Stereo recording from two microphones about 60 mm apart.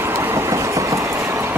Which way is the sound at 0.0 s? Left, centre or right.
Right.